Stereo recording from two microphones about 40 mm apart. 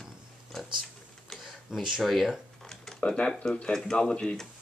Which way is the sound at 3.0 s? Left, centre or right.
Left.